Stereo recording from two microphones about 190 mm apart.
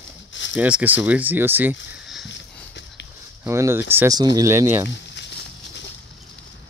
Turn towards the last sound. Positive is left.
turn(degrees=65)  # may be behind; listen again after turning